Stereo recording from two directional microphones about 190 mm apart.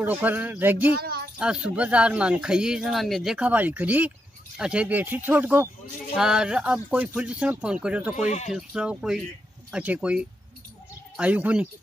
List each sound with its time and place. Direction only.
0.0 s speech: 10° right (ahead or behind)
0.9 s speech: 55° right (ahead or behind)
1.4 s speech: 5° right (ahead or behind)